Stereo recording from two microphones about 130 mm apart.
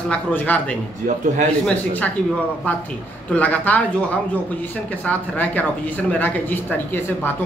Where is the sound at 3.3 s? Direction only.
10° left (ahead or behind).